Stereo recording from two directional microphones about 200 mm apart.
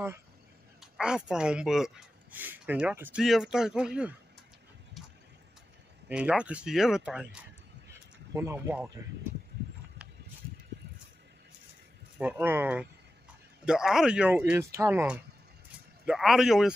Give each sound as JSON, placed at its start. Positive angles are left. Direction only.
{"t": 0.7, "sound": "speech", "side_deg": -5}
{"t": 5.0, "sound": "vehicle", "side_deg": 0}
{"t": 6.0, "sound": "speech", "side_deg": -5}
{"t": 7.9, "sound": "a sound", "side_deg": -15}
{"t": 12.2, "sound": "speech", "side_deg": -10}